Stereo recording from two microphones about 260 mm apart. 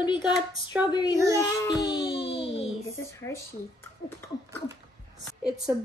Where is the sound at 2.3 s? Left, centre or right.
Left.